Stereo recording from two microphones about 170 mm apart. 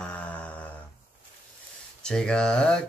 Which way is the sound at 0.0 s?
5° left (ahead or behind).